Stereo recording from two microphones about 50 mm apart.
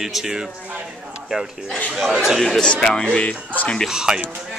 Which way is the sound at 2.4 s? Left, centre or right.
Centre.